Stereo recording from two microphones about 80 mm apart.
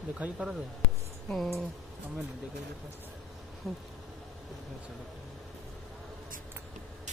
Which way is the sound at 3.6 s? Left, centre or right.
Centre.